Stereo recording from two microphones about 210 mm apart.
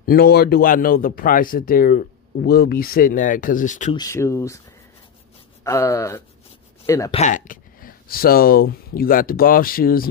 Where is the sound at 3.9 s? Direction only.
15° left (ahead or behind).